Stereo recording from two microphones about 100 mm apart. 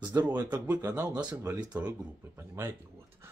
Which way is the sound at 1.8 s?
25° right (ahead or behind).